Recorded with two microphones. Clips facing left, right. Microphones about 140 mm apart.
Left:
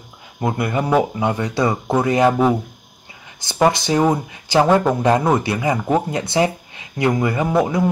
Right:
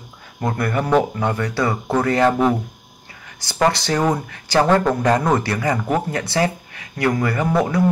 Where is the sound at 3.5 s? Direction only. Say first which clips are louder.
Left 2 dB; 15° left (ahead or behind).